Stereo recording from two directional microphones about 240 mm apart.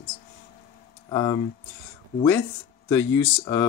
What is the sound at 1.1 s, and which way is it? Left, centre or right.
Speech, centre.